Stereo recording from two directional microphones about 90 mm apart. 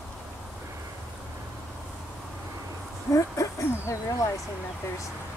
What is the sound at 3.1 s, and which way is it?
Speech, 35° left (ahead or behind).